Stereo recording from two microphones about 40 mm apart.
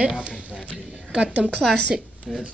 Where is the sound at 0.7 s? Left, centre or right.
Right.